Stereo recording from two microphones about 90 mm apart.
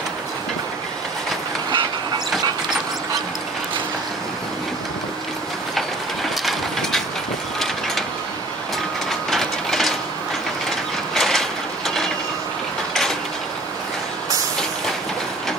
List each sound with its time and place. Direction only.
1.7 s train: 60° right (ahead or behind)
5.8 s a sound: centre (ahead or behind)
9.3 s ratchet: 5° left (ahead or behind)
11.1 s mechanisms: 5° left (ahead or behind)